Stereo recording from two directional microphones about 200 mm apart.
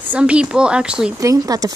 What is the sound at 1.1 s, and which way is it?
Speech, 15° right (ahead or behind).